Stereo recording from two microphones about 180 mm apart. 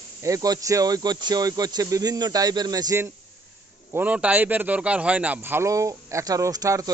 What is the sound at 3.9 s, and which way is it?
Speech, 10° right (ahead or behind).